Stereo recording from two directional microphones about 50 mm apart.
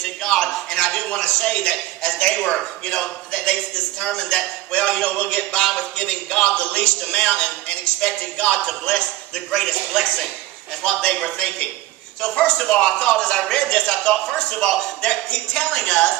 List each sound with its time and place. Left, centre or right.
0.0 s a man's voice: centre
10.8 s speech: centre